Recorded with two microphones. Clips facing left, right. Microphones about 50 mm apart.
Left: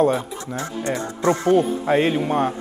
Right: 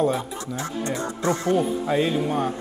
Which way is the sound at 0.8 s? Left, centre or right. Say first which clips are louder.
Left 5 dB; left.